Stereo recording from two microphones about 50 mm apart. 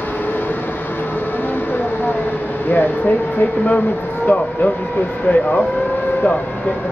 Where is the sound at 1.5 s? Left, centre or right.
Left.